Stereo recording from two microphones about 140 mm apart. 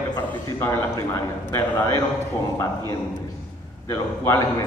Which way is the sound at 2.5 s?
20° left (ahead or behind).